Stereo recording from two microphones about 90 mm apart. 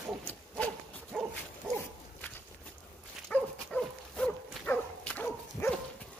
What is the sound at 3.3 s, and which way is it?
Dog, 15° left (ahead or behind).